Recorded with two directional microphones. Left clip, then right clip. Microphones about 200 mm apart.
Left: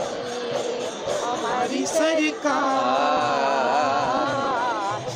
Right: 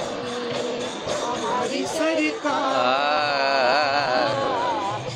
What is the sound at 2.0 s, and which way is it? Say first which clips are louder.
Music: left 2 dB; 25° left (ahead or behind).